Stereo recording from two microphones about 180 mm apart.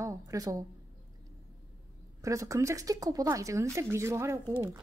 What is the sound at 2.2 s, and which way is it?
Speech, 15° right (ahead or behind).